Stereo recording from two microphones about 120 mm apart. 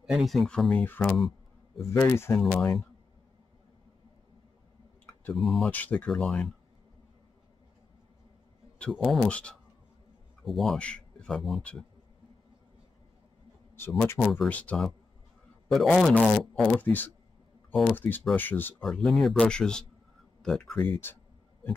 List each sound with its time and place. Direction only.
0.0 s speech: 5° right (ahead or behind); by 2.4 s 20° left (ahead or behind)
2.4 s speech: 5° left (ahead or behind)
5.3 s speech: centre (ahead or behind)
5.7 s speech: 15° left (ahead or behind)
8.9 s speech: centre (ahead or behind)
9.3 s speech: 10° left (ahead or behind)
14.2 s speech: centre (ahead or behind)
14.5 s speech: 10° left (ahead or behind)
16.8 s speech: 15° left (ahead or behind)
18.8 s speech: 5° left (ahead or behind)
20.7 s speech: 15° left (ahead or behind)